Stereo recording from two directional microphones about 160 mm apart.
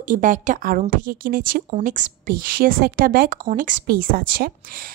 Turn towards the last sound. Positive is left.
turn(degrees=-60)  # may be behind; listen again after turning